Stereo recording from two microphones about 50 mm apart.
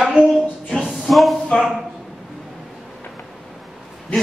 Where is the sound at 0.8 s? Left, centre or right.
Centre.